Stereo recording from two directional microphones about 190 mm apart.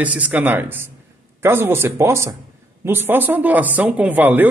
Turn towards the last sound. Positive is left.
turn(degrees=-10)  # may be behind; listen again after turning